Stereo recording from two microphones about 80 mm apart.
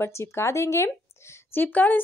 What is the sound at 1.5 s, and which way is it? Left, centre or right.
Speech, left.